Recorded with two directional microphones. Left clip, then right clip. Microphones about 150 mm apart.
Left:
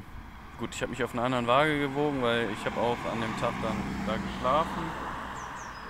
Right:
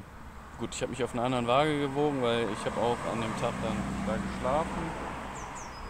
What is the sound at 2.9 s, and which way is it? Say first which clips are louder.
Speech: left 1 dB; 35° right (ahead or behind).